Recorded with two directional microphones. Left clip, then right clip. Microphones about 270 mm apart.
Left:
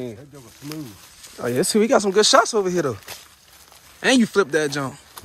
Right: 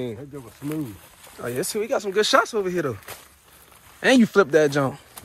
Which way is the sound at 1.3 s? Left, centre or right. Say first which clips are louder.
Left 7 dB; left.